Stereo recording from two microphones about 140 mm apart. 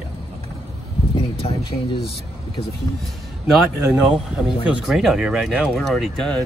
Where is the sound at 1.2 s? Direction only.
40° left (ahead or behind).